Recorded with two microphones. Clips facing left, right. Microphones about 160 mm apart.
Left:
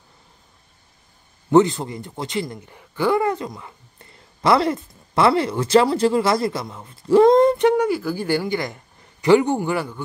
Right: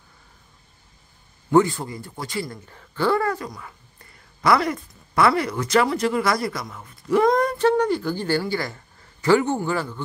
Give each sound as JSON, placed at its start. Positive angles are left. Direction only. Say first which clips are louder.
{"t": 1.5, "sound": "speech", "louder": "left 3 dB", "side_deg": 20}